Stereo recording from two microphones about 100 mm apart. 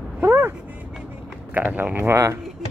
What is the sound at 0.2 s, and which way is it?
Vehicle, 20° right (ahead or behind).